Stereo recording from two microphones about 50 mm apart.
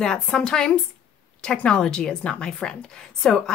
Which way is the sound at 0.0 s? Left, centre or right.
Centre.